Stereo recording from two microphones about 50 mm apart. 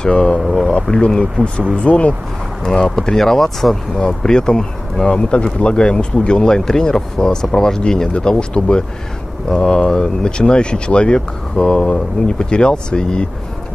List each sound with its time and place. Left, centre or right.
0.0 s speech: centre
0.4 s speech: centre
0.8 s speech: centre
2.6 s speech: centre